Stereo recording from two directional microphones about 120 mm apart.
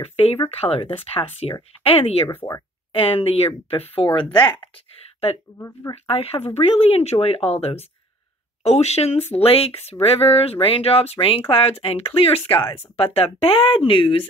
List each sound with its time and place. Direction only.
0.0 s speech: 60° left (ahead or behind)
2.2 s speech: 25° left (ahead or behind)
3.0 s speech: 55° left (ahead or behind)
5.6 s speech: 25° left (ahead or behind)
6.0 s speech: 55° left (ahead or behind)